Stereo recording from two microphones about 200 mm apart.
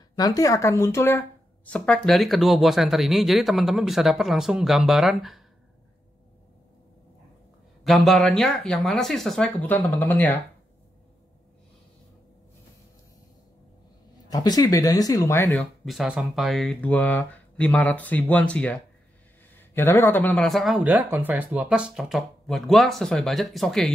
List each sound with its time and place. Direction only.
0.2 s speech: 20° left (ahead or behind); by 5.4 s centre (ahead or behind)
7.8 s speech: centre (ahead or behind)
14.3 s speech: 20° left (ahead or behind)
15.8 s speech: centre (ahead or behind)